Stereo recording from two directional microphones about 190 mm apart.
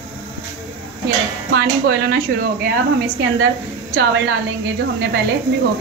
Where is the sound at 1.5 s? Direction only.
60° right (ahead or behind).